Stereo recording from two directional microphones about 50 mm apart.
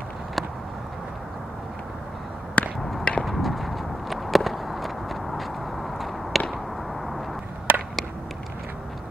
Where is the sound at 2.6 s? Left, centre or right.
Left.